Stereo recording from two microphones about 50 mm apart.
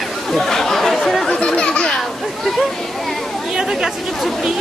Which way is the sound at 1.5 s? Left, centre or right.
Centre.